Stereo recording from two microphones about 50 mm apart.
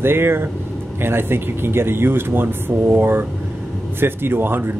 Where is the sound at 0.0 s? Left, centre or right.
Right.